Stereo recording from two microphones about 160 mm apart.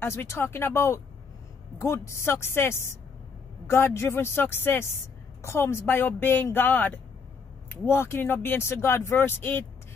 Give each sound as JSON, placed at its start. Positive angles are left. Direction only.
{"t": 0.0, "sound": "speech", "side_deg": 15}